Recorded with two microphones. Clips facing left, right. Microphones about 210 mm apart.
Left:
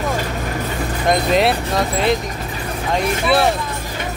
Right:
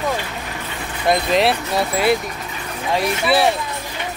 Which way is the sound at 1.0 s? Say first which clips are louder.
Left 1 dB; centre (ahead or behind).